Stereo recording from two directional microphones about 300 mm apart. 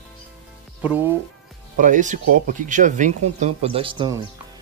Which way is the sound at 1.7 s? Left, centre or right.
Right.